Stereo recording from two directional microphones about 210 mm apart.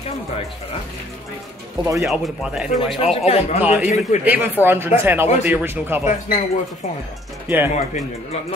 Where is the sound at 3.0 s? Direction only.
30° left (ahead or behind).